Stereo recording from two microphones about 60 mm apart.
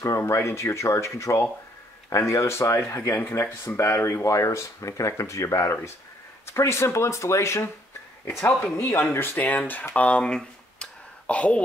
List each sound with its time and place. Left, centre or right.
0.2 s speech: left
8.7 s speech: left
9.9 s a sound: left